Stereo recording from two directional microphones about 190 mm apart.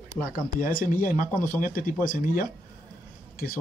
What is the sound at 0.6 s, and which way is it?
Speech, 45° left (ahead or behind).